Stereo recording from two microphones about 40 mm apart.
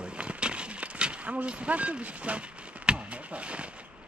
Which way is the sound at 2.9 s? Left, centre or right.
Right.